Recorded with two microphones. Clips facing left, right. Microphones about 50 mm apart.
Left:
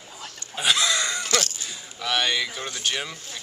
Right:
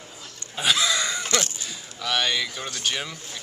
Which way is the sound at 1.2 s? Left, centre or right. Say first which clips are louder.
Even; right.